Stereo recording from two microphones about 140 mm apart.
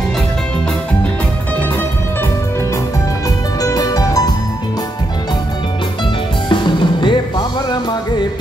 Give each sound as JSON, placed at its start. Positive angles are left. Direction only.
{"t": 3.6, "sound": "music", "side_deg": 25}
{"t": 6.5, "sound": "music", "side_deg": 35}